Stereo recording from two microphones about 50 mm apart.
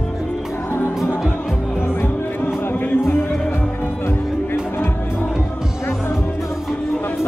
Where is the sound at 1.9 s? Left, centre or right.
Left.